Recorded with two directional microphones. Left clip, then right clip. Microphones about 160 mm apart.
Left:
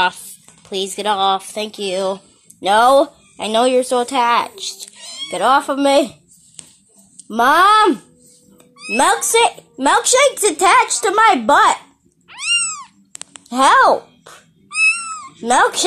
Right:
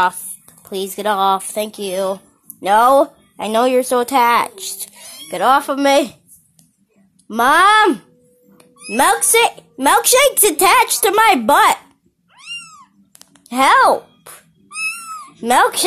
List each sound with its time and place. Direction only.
0.7 s speech: 10° right (ahead or behind)
1.1 s speech: 25° right (ahead or behind)
5.0 s speech: 10° right (ahead or behind)
7.2 s speech: 5° right (ahead or behind)
10.0 s speech: 35° right (ahead or behind); by 11.7 s 20° right (ahead or behind)
12.3 s cat: 15° left (ahead or behind)
13.1 s a sound: centre (ahead or behind)